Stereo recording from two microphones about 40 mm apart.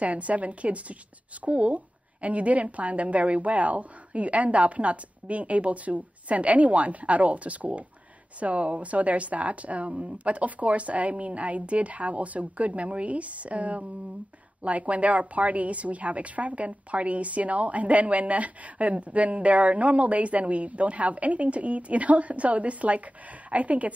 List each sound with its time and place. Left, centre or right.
0.0 s a woman's voice: right